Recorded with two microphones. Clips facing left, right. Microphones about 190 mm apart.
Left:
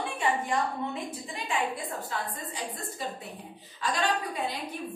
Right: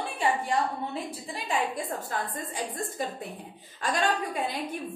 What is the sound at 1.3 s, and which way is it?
Speech, 35° right (ahead or behind).